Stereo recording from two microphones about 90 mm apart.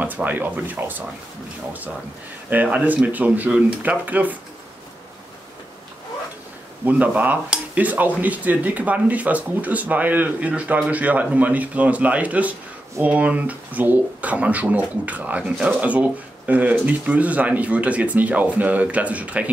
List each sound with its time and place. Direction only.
0.0 s speech: 20° right (ahead or behind)
2.5 s speech: 15° right (ahead or behind)
6.8 s speech: 20° right (ahead or behind)